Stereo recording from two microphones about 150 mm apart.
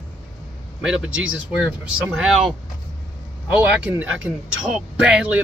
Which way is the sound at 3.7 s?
10° right (ahead or behind).